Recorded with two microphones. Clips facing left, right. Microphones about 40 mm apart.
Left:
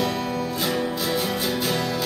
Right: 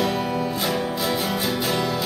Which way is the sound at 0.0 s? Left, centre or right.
Centre.